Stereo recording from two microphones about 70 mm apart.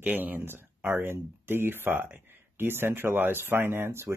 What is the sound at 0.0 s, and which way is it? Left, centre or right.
Speech, right.